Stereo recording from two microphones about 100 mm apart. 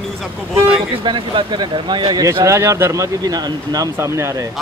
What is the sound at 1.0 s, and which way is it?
Speech, 50° right (ahead or behind).